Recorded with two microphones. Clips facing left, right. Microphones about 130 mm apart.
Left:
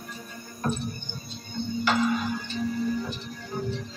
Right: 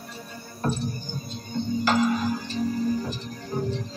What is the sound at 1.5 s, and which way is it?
Music, 35° right (ahead or behind).